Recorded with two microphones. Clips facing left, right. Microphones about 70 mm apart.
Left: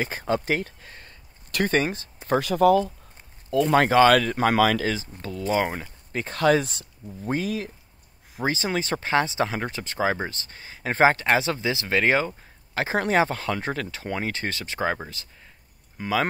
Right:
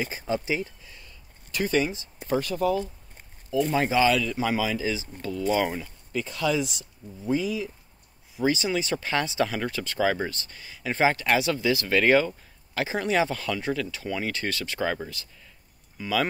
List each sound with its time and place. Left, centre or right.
0.0 s speech: left
1.5 s speech: left
3.9 s speech: left
8.4 s speech: left
12.9 s speech: left